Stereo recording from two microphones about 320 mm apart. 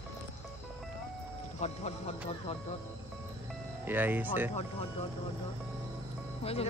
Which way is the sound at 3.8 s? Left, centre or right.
Centre.